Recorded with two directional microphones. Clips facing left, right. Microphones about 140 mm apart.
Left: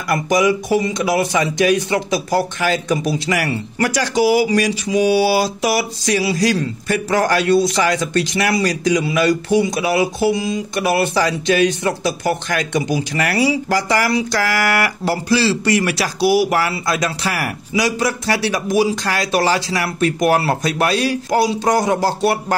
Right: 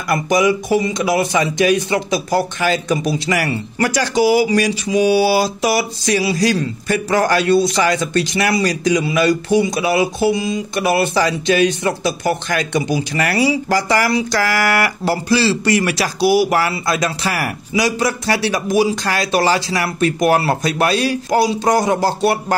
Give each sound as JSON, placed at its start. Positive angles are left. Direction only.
{"t": 0.1, "sound": "speech", "side_deg": -25}